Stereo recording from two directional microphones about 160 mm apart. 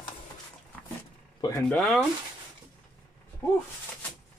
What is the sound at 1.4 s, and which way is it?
Speech, 20° left (ahead or behind).